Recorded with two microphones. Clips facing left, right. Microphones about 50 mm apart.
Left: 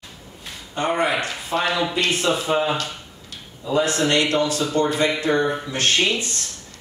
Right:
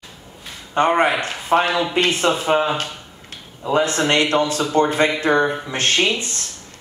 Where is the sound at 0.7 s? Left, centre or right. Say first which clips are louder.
Right 5 dB; right.